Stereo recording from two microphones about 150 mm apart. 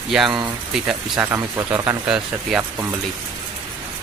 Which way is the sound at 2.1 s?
5° right (ahead or behind).